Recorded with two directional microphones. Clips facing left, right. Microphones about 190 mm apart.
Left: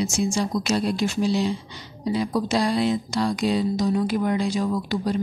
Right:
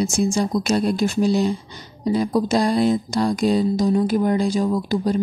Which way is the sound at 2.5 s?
45° right (ahead or behind).